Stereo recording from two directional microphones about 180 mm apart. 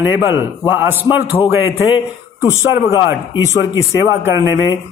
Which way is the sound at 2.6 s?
15° right (ahead or behind).